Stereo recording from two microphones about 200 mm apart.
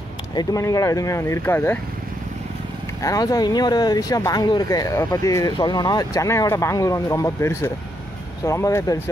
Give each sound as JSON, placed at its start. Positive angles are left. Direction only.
{"t": 0.3, "sound": "speech", "side_deg": 20}
{"t": 3.0, "sound": "speech", "side_deg": 20}